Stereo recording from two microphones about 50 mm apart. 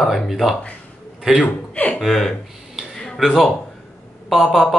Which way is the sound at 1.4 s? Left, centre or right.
Left.